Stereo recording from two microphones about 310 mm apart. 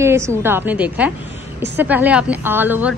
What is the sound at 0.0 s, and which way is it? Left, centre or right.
A woman's voice, centre.